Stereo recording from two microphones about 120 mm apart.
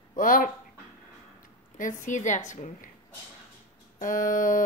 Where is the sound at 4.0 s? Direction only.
90° left.